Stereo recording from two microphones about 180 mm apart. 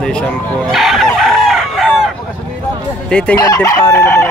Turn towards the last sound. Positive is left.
turn(degrees=15)  # may be behind; listen again after turning